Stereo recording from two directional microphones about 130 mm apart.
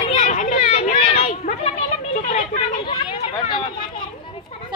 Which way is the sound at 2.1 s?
70° left (ahead or behind).